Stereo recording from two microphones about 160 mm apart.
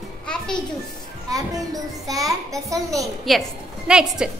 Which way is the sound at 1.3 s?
20° right (ahead or behind).